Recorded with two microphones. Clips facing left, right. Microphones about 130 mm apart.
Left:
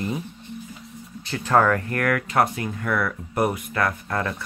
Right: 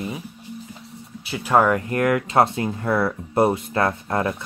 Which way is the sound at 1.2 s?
10° right (ahead or behind).